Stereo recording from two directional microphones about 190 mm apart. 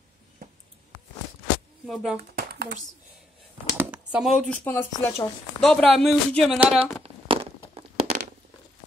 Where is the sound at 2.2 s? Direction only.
55° right (ahead or behind).